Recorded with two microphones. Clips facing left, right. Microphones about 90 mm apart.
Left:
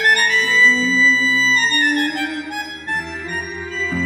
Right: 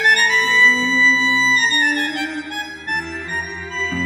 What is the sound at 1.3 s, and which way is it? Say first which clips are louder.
Music: even; 15° right (ahead or behind).